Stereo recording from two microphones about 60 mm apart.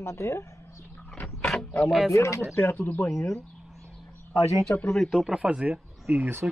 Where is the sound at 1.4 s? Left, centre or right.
Centre.